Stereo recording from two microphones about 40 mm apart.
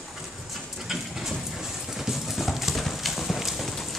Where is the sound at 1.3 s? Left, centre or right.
Centre.